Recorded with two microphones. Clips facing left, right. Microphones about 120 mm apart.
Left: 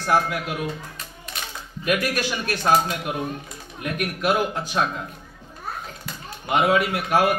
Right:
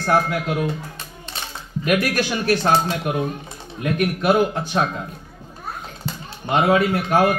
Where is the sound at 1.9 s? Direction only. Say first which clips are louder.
Right 3 dB; 30° right (ahead or behind).